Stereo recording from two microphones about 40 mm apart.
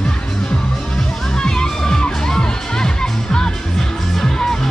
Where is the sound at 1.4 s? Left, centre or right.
Centre.